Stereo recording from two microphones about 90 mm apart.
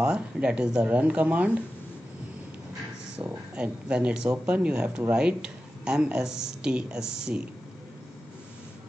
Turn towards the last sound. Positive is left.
turn(degrees=-10)  # may be behind; listen again after turning